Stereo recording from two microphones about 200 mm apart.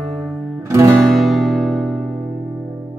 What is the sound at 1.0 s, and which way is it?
Music, centre (ahead or behind).